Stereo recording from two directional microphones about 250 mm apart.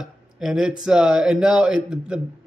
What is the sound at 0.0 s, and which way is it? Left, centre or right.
Speech, centre.